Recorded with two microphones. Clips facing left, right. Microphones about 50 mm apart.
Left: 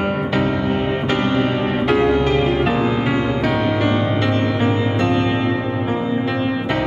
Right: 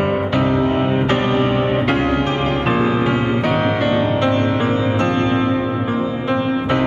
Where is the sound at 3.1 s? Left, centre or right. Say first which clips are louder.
Right 1 dB; right.